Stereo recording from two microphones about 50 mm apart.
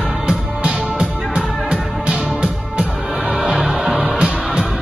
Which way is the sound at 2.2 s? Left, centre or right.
Centre.